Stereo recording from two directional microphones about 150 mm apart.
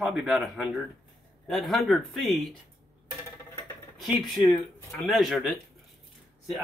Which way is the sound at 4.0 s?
Centre (ahead or behind).